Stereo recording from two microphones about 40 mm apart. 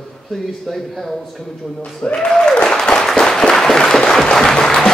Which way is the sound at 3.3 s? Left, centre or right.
Centre.